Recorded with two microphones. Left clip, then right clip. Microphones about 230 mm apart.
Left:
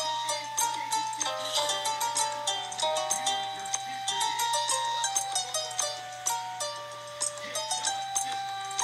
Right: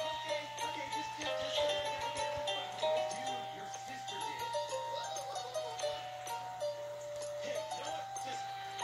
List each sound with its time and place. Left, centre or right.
0.0 s music: left
7.7 s music: left